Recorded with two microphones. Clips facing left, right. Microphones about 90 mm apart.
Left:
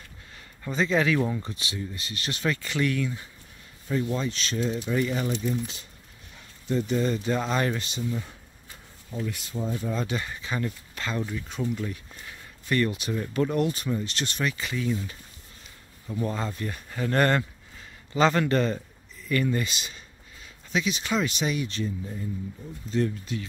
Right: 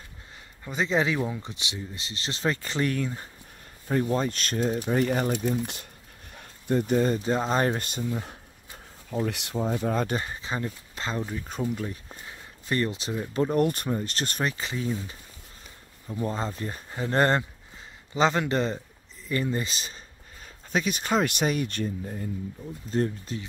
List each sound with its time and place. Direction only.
0.7 s speech: 15° right (ahead or behind); by 8.1 s 50° right (ahead or behind)
9.2 s speech: 75° right (ahead or behind)
9.6 s speech: 60° right (ahead or behind)
10.1 s speech: 30° right (ahead or behind)
11.8 s a sound: 30° right (ahead or behind)
13.3 s speech: 30° right (ahead or behind)
13.6 s speech: 45° right (ahead or behind); by 15.1 s 25° right (ahead or behind)
16.3 s speech: 30° right (ahead or behind)
20.4 s speech: 45° right (ahead or behind)
22.8 s speech: 40° right (ahead or behind)